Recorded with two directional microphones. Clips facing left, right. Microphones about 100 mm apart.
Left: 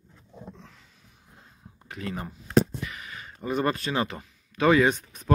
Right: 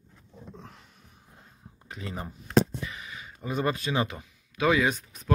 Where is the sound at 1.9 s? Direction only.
25° right (ahead or behind).